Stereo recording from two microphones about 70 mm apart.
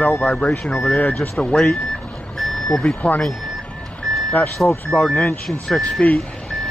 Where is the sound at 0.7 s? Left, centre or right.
Centre.